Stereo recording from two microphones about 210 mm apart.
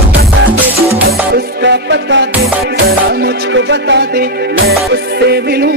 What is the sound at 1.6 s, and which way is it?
Music, 60° right (ahead or behind).